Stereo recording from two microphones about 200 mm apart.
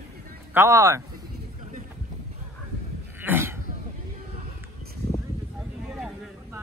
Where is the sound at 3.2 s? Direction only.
10° right (ahead or behind).